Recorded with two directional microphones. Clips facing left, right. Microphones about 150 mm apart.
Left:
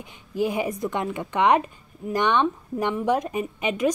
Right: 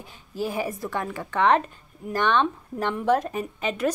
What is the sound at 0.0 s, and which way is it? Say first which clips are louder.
A woman's voice: left 4 dB; 15° left (ahead or behind).